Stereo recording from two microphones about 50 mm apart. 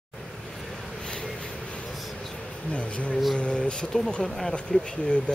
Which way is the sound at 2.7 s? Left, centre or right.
Left.